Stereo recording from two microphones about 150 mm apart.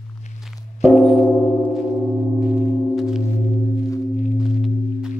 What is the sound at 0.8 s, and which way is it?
Gong, centre (ahead or behind).